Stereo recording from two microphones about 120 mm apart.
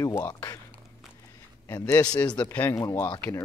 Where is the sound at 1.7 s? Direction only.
20° left (ahead or behind).